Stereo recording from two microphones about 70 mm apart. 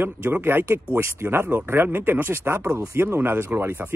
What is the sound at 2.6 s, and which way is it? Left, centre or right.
Speech, right.